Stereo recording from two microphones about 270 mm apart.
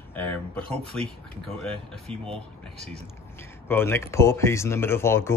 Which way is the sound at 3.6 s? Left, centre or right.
Centre.